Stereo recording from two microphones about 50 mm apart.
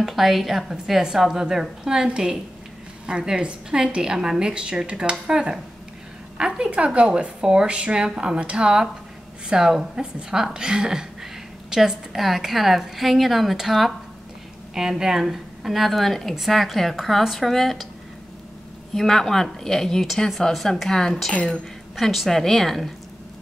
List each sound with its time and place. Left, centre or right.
0.0 s a woman's voice: centre
18.9 s a woman's voice: centre